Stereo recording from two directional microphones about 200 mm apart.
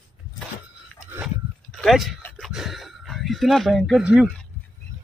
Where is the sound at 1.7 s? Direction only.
Centre (ahead or behind).